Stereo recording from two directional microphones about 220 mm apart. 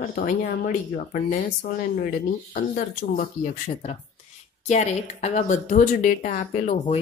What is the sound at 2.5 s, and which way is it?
Speech, 40° left (ahead or behind).